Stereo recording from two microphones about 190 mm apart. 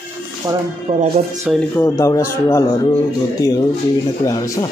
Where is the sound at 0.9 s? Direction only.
30° right (ahead or behind).